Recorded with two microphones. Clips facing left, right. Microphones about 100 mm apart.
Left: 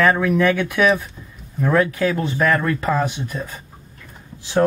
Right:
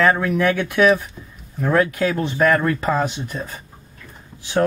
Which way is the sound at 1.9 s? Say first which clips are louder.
Even; 20° right (ahead or behind).